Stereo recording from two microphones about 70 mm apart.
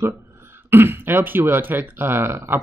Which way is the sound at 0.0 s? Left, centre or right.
Right.